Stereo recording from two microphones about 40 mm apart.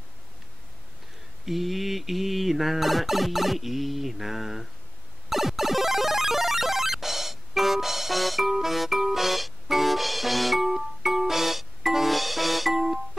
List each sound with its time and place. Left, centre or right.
1.4 s music: centre